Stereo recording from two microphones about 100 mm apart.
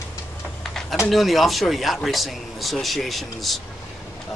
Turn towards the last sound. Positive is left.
turn(degrees=0)  # may be behind; listen again after turning